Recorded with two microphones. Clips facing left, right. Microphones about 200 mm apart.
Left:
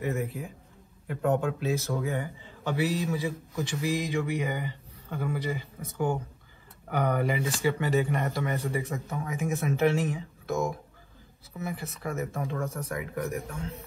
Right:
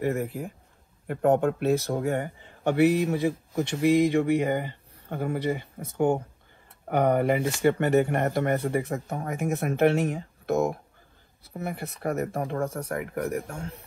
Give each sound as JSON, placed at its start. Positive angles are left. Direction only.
{"t": 0.0, "sound": "speech", "side_deg": -55}
{"t": 12.5, "sound": "speech", "side_deg": -30}
{"t": 12.9, "sound": "speech", "side_deg": -55}